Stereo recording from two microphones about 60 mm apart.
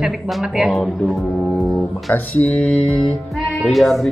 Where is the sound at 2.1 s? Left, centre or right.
Left.